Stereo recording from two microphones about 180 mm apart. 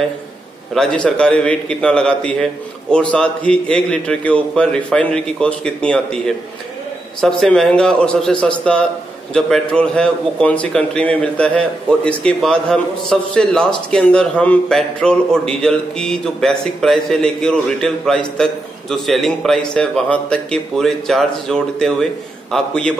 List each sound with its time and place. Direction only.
0.7 s a man's voice: 5° left (ahead or behind)